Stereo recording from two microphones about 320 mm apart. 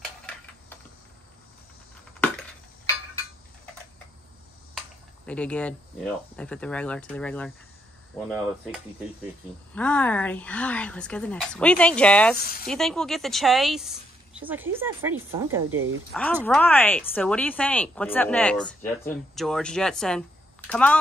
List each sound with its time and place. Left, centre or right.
5.2 s a woman's voice: centre
9.8 s a woman's voice: centre
15.7 s speech: right
16.1 s a woman's voice: centre